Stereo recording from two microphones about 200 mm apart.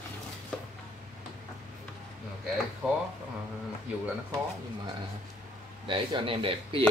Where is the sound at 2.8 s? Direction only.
Centre (ahead or behind).